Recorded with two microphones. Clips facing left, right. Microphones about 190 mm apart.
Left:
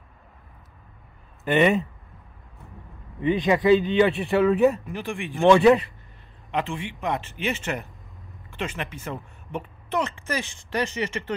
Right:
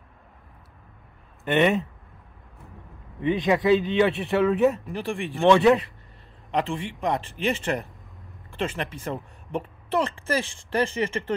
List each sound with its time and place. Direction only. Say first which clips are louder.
1.4 s speech: left 1 dB; centre (ahead or behind)
3.2 s speech: left 1 dB; centre (ahead or behind)
5.0 s a woman's voice: right 3 dB; 35° right (ahead or behind)
5.4 s speech: left 2 dB; centre (ahead or behind)
7.2 s a woman's voice: right 2 dB; 35° right (ahead or behind)